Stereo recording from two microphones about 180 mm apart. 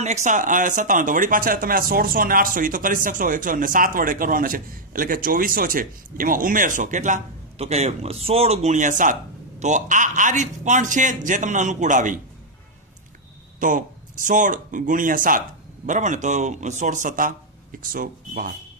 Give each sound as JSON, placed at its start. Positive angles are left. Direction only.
{"t": 0.0, "sound": "speech", "side_deg": -40}
{"t": 13.6, "sound": "speech", "side_deg": -45}